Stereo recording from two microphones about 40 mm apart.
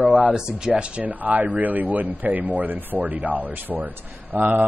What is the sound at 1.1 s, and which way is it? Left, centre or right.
A man's voice, right.